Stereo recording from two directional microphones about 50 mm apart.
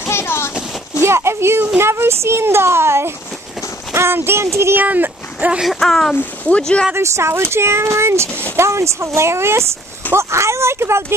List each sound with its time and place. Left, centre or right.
0.1 s a sound: left
1.0 s a child's voice: right
4.7 s speech: right
5.8 s speech: centre
7.0 s speech: right
7.5 s a child's voice: right
10.1 s a child's voice: right